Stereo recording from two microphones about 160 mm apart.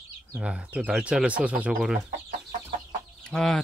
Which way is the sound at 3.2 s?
5° left (ahead or behind).